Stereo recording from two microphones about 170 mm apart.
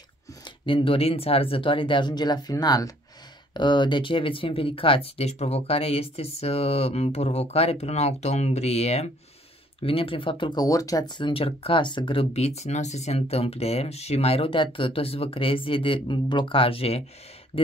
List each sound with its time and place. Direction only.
0.7 s speech: 30° left (ahead or behind)